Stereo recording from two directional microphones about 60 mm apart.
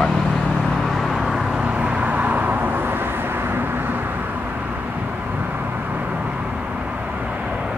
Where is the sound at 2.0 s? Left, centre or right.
Right.